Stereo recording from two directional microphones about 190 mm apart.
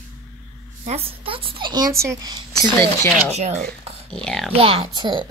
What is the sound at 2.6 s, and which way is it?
Speech, 15° left (ahead or behind).